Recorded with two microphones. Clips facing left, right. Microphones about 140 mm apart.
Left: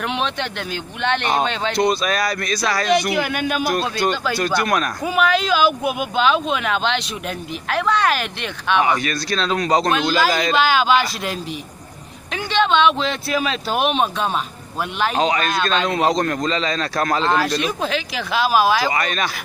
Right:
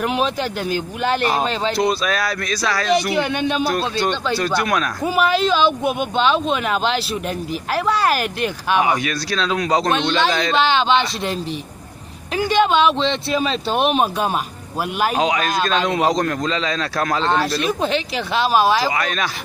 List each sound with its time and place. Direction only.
1.0 s speech: 5° right (ahead or behind)
3.3 s speech: 25° right (ahead or behind)
3.5 s speech: 5° left (ahead or behind)
4.3 s speech: 5° right (ahead or behind)
8.0 s speech: 40° right (ahead or behind)
8.6 s speech: 10° right (ahead or behind)
12.4 s speech: 10° right (ahead or behind)
13.5 s speech: centre (ahead or behind)